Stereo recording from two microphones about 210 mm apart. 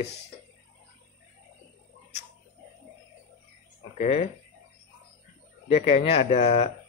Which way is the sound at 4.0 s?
35° left (ahead or behind).